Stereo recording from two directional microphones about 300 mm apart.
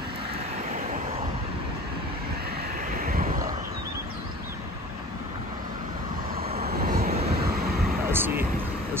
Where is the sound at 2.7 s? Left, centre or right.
Right.